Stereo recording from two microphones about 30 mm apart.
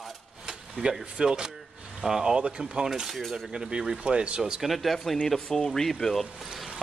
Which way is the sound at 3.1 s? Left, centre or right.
Centre.